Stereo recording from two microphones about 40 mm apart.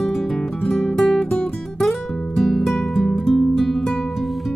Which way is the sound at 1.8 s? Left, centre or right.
Centre.